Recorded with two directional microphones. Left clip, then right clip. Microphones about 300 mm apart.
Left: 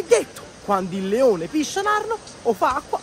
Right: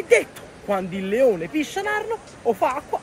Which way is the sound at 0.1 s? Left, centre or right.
Centre.